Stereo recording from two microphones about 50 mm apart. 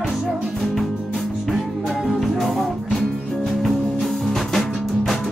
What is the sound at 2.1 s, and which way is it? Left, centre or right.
Music, centre.